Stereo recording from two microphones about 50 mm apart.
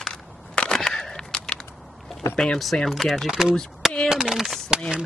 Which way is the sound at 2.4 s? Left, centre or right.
Centre.